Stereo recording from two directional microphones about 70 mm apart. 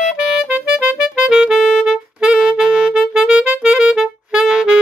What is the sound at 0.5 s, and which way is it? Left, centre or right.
Music, right.